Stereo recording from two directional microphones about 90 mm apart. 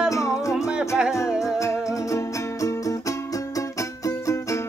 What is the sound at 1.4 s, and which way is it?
Music, 35° left (ahead or behind).